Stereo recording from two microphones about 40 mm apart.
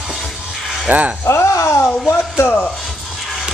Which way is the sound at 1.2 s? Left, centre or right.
Left.